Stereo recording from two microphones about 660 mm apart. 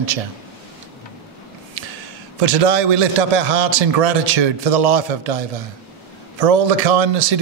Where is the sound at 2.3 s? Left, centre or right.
Right.